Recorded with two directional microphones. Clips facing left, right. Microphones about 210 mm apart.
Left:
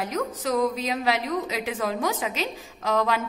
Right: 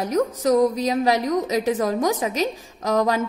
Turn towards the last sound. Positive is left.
turn(degrees=-40)  # may be behind; listen again after turning